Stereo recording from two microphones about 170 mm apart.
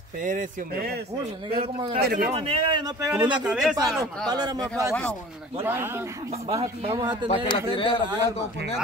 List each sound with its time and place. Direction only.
0.2 s speech: 50° right (ahead or behind)
1.6 s speech: 30° right (ahead or behind)
2.0 s speech: 65° right (ahead or behind)
2.3 s speech: 40° right (ahead or behind)
3.1 s speech: 5° right (ahead or behind)
3.7 s a man's voice: 20° right (ahead or behind)
6.5 s speech: 35° right (ahead or behind)
7.2 s speech: 30° left (ahead or behind)